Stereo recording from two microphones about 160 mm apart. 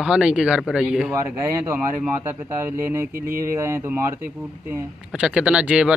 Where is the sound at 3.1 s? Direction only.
65° right (ahead or behind).